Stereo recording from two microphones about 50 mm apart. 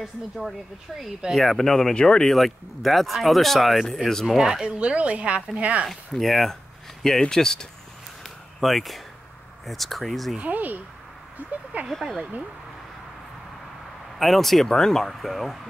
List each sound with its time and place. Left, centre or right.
0.0 s speech: centre
4.4 s speech: centre
4.7 s speech: right
5.9 s speech: centre
8.2 s a sound: centre
9.7 s speech: centre
10.3 s speech: right
14.1 s speech: centre